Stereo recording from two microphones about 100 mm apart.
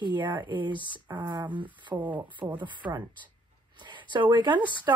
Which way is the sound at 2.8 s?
55° right (ahead or behind).